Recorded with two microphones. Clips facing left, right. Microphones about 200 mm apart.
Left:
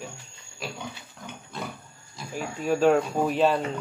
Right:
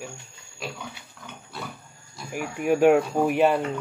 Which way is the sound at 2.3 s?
15° right (ahead or behind).